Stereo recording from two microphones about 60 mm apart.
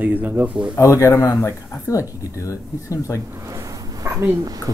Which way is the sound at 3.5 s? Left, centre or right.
Right.